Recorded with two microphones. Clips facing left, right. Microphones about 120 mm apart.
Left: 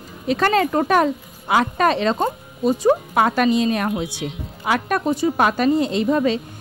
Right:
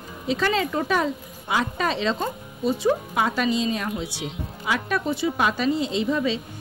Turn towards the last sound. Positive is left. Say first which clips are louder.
# left 5 dB
turn(degrees=50)  # may be behind; listen again after turning